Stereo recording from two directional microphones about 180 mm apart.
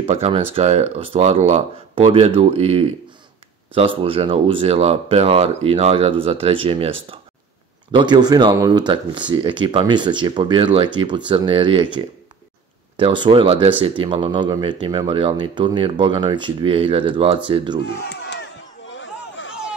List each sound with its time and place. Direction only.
0.0 s speech: 30° right (ahead or behind)
17.9 s crowd: 70° left (ahead or behind); by 19.5 s 90° left